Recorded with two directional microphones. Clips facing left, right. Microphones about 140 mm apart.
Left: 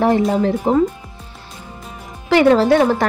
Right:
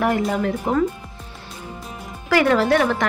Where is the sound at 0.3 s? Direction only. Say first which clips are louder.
Left 5 dB; 30° left (ahead or behind).